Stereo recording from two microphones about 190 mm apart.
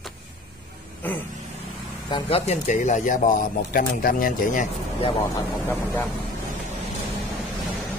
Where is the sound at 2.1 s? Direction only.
25° left (ahead or behind); by 4.7 s 45° left (ahead or behind).